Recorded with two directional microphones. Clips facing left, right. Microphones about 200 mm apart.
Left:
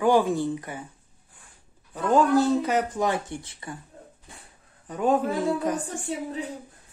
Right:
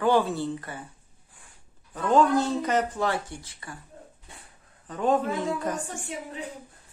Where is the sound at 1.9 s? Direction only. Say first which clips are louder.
Left 1 dB; 10° left (ahead or behind).